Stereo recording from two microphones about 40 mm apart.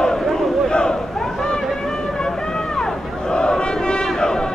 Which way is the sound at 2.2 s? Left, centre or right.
Centre.